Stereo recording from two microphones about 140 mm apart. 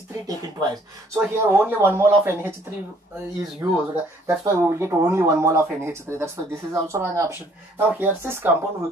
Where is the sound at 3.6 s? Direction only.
20° right (ahead or behind).